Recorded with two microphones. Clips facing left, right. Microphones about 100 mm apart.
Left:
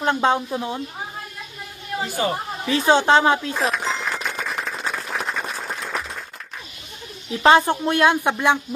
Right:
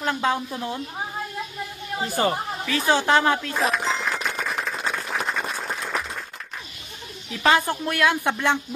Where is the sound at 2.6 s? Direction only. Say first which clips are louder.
Left 5 dB; 25° left (ahead or behind).